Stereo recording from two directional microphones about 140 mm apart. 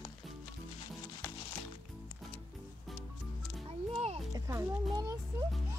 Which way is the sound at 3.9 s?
45° right (ahead or behind).